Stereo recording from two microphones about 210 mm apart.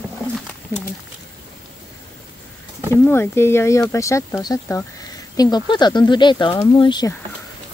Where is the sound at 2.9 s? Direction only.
10° left (ahead or behind).